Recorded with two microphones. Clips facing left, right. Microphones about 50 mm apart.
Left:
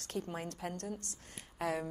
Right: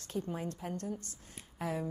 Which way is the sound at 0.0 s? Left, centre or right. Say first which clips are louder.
Right 2 dB; left.